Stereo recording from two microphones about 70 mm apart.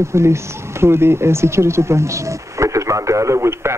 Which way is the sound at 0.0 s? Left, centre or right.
Right.